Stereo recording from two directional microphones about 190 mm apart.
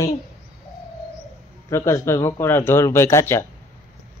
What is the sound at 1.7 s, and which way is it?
Speech, 15° left (ahead or behind).